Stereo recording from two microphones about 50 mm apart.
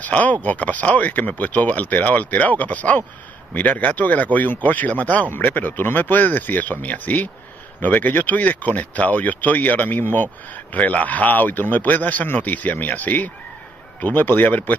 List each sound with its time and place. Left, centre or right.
0.0 s speech: left